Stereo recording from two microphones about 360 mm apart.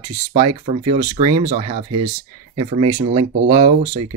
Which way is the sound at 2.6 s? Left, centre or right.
Centre.